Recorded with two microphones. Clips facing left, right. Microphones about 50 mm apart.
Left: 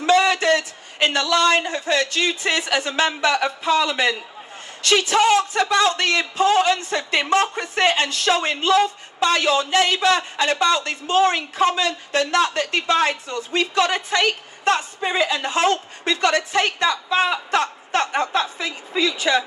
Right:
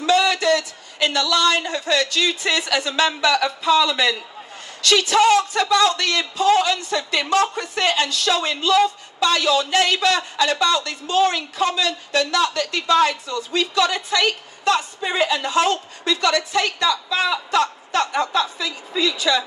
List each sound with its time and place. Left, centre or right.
0.0 s a woman's voice: left